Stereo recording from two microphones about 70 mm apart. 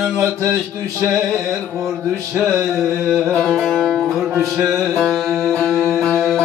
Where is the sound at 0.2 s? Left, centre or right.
Right.